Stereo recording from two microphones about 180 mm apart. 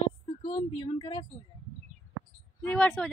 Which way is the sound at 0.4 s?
30° left (ahead or behind).